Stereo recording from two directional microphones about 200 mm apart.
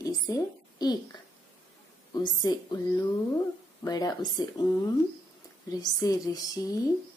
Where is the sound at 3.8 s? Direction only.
20° left (ahead or behind).